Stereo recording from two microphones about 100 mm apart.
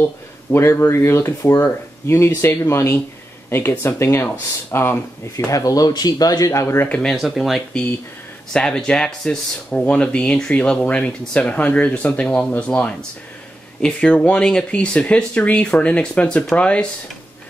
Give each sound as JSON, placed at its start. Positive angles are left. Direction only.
{"t": 0.0, "sound": "speech", "side_deg": 25}
{"t": 5.5, "sound": "speech", "side_deg": 35}
{"t": 6.9, "sound": "speech", "side_deg": 10}
{"t": 7.2, "sound": "speech", "side_deg": 0}